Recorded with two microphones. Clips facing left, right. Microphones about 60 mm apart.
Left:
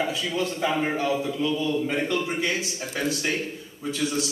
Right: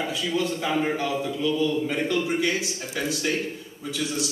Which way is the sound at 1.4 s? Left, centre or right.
Left.